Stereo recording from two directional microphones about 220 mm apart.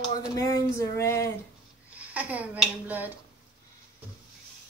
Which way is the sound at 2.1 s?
5° right (ahead or behind).